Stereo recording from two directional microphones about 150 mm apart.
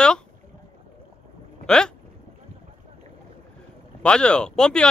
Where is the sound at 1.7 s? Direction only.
5° left (ahead or behind).